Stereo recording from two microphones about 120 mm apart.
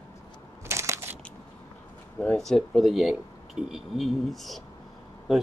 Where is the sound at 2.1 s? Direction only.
5° left (ahead or behind).